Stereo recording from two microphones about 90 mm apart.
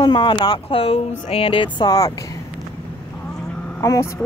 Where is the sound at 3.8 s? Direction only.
35° left (ahead or behind).